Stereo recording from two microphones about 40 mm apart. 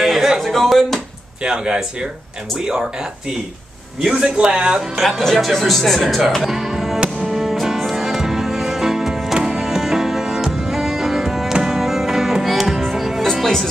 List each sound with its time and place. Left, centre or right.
0.0 s music: centre
0.4 s speech: centre
1.4 s a man's voice: right
4.1 s a man's voice: right
4.9 s speech: centre
5.2 s speech: centre
7.2 s music: centre
13.3 s music: centre